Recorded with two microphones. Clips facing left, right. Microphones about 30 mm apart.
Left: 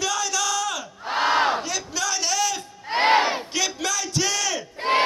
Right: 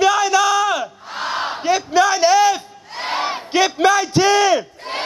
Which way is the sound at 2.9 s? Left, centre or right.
Left.